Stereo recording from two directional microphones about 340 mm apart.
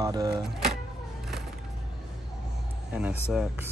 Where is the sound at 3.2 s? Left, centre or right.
Centre.